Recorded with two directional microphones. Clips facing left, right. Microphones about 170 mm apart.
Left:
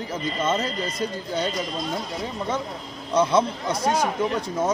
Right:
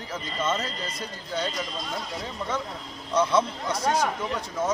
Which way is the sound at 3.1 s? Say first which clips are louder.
Left 3 dB; 15° left (ahead or behind).